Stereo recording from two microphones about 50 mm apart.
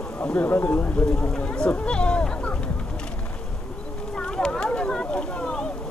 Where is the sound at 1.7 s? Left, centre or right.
Left.